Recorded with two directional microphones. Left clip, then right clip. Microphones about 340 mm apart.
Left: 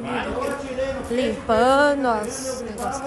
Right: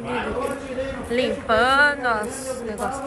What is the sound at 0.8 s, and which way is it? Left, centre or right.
A woman's voice, centre.